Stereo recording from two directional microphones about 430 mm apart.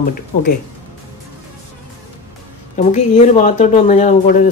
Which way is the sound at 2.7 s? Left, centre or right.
Centre.